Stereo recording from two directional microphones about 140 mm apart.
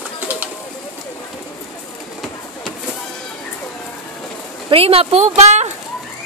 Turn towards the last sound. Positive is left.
turn(degrees=-55)  # may be behind; listen again after turning